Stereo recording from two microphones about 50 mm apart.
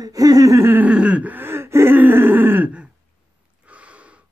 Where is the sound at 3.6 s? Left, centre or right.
Right.